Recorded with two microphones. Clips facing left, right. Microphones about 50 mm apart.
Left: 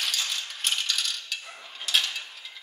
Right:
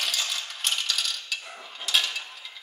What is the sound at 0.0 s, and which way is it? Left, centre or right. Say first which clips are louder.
Coin: right 1 dB; centre.